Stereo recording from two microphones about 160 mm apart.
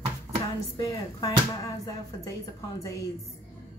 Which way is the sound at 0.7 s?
25° left (ahead or behind).